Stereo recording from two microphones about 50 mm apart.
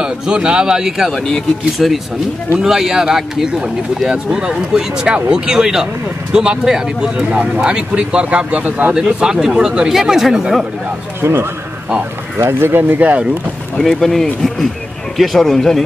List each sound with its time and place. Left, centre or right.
0.0 s speech: centre
1.1 s speech: centre
1.8 s a man's voice: centre; by 8.9 s right
8.9 s speech: centre
11.1 s speech: right
12.8 s speech: right
13.7 s a man's voice: centre